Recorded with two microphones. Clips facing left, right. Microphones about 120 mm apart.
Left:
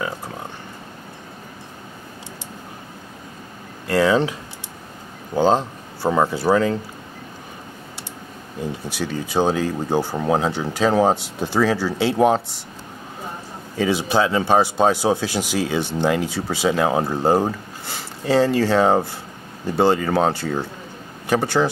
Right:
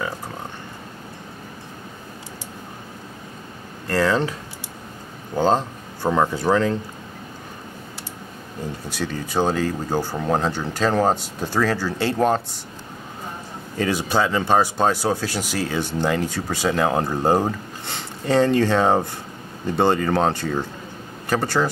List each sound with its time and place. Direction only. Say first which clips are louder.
3.9 s speech: left 3 dB; 5° left (ahead or behind)
8.8 s speech: left 1 dB; 10° left (ahead or behind)
13.7 s speech: left 2 dB; 5° left (ahead or behind)